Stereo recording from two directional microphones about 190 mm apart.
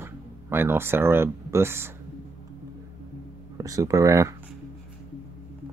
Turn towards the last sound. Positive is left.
turn(degrees=-15)  # may be behind; listen again after turning